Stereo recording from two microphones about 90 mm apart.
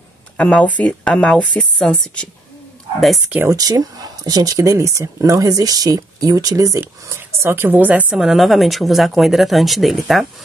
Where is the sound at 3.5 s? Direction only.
45° right (ahead or behind); by 8.0 s 20° right (ahead or behind).